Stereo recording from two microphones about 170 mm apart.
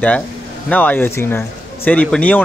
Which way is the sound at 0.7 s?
10° left (ahead or behind).